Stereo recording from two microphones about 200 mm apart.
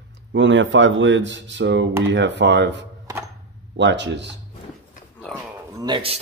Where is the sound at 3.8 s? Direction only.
60° right (ahead or behind).